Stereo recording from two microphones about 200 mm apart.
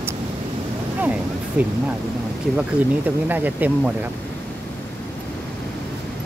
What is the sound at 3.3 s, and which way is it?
Speech, 10° right (ahead or behind).